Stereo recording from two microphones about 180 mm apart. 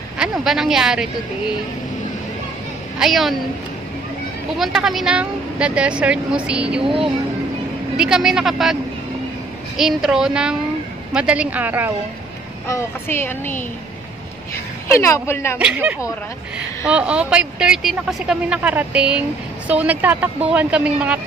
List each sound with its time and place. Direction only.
0.2 s a woman's voice: centre (ahead or behind)
3.0 s a woman's voice: centre (ahead or behind)
4.6 s a woman's voice: centre (ahead or behind)
6.8 s speech: 30° right (ahead or behind)
8.0 s a woman's voice: 5° right (ahead or behind)
9.8 s a woman's voice: centre (ahead or behind)
12.6 s speech: 15° left (ahead or behind)
15.0 s speech: 15° left (ahead or behind)
15.6 s a woman's voice: 10° right (ahead or behind)